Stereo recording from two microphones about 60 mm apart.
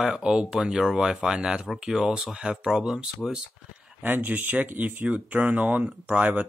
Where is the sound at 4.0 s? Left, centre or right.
Right.